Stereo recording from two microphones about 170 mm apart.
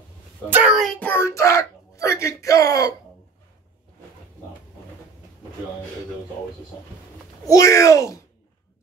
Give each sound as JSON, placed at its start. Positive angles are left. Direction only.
{"t": 0.5, "sound": "a child's voice", "side_deg": -10}
{"t": 7.4, "sound": "speech", "side_deg": 20}